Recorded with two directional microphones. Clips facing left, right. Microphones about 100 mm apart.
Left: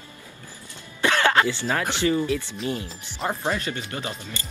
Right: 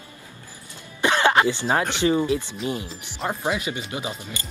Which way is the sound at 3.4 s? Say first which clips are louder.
Right 1 dB; 10° right (ahead or behind).